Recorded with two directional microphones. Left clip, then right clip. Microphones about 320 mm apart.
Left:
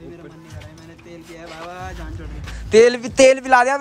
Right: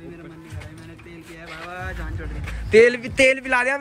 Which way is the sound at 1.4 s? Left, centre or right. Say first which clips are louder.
Even; centre.